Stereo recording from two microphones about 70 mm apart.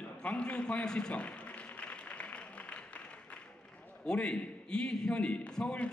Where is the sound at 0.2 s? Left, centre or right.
Centre.